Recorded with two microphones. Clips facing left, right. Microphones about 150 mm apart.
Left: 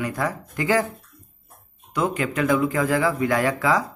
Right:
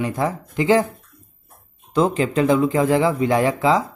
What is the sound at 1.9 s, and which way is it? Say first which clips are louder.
Speech: right 6 dB; 30° right (ahead or behind).